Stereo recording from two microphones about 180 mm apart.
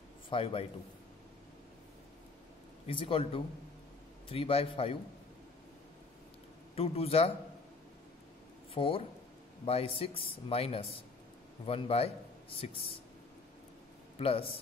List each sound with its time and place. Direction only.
0.3 s speech: 30° left (ahead or behind)
2.9 s speech: 30° left (ahead or behind)
6.7 s speech: 35° left (ahead or behind)
8.7 s speech: 30° left (ahead or behind)
14.1 s speech: 35° left (ahead or behind)